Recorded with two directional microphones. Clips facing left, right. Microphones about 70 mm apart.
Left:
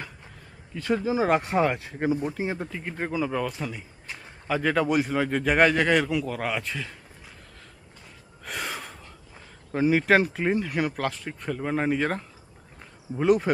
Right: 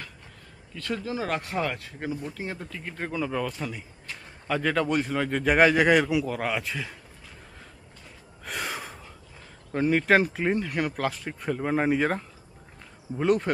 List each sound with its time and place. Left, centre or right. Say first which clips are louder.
0.7 s speech: left 6 dB; centre
8.5 s gasp: even; centre
9.7 s speech: left 1 dB; centre